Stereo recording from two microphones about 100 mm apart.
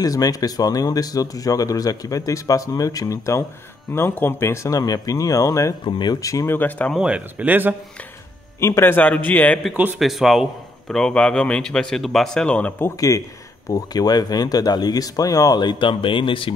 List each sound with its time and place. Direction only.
0.0 s speech: 35° left (ahead or behind)
5.9 s speech: 50° left (ahead or behind)
6.2 s speech: 35° left (ahead or behind)
6.5 s speech: 20° left (ahead or behind)
7.0 s speech: 15° right (ahead or behind)
8.5 s speech: 30° left (ahead or behind)
8.9 s a man's voice: 15° left (ahead or behind)
9.9 s a man's voice: centre (ahead or behind); by 12.9 s 20° left (ahead or behind)
13.7 s speech: 40° left (ahead or behind); by 16.5 s 60° left (ahead or behind)